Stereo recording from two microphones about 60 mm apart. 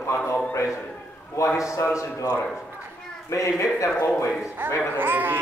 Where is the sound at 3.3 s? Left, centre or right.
Left.